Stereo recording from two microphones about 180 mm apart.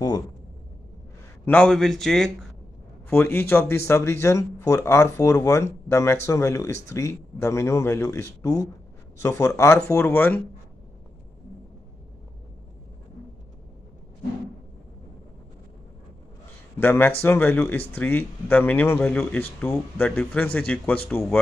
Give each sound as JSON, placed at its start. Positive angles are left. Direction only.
{"t": 1.4, "sound": "a man's voice", "side_deg": 5}
{"t": 3.1, "sound": "speech", "side_deg": 10}
{"t": 16.7, "sound": "speech", "side_deg": 10}